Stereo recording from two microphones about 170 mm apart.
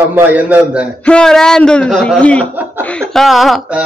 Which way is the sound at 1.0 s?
5° left (ahead or behind).